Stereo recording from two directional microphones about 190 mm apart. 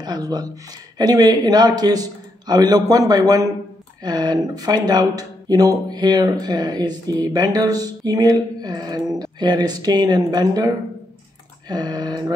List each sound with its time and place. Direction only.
0.0 s speech: 20° right (ahead or behind)
11.7 s speech: 20° right (ahead or behind)